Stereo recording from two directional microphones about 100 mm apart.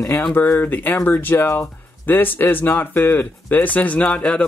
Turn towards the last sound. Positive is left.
turn(degrees=10)  # may be behind; listen again after turning